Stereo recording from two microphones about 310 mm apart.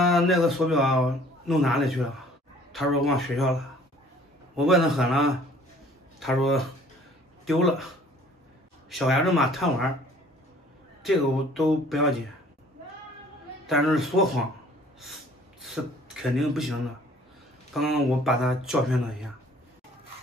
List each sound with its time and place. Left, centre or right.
0.0 s a man's voice: centre
8.9 s a man's voice: centre
11.0 s a man's voice: centre
13.7 s a man's voice: centre
15.6 s speech: centre
17.7 s a man's voice: centre